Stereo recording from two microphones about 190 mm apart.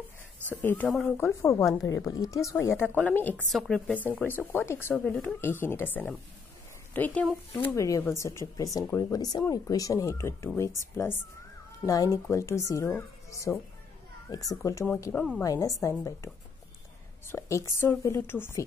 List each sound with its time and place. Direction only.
0.6 s speech: 10° left (ahead or behind)
17.3 s speech: 15° left (ahead or behind)